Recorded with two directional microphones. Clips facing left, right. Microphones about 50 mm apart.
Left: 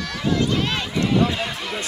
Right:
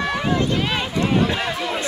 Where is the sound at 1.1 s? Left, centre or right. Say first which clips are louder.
Even; right.